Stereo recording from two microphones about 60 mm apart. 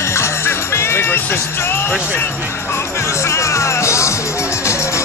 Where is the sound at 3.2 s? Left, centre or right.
Left.